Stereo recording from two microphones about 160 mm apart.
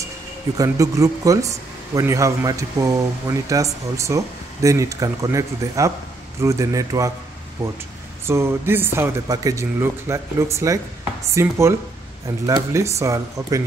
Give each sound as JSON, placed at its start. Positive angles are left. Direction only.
{"t": 0.6, "sound": "speech", "side_deg": -20}
{"t": 8.3, "sound": "speech", "side_deg": -15}